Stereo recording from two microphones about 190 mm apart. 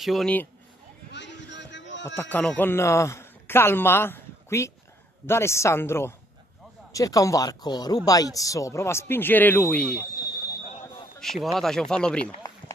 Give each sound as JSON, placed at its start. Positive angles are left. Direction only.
{"t": 0.0, "sound": "speech", "side_deg": 0}
{"t": 1.1, "sound": "a sound", "side_deg": 65}
{"t": 2.1, "sound": "a man's voice", "side_deg": 10}
{"t": 11.1, "sound": "speech", "side_deg": 0}